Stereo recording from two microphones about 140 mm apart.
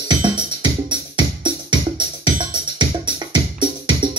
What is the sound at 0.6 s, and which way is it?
Music, 35° right (ahead or behind).